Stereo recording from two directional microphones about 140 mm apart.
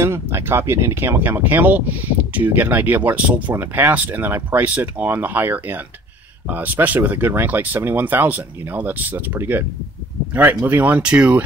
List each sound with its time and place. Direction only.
0.0 s speech: 20° right (ahead or behind)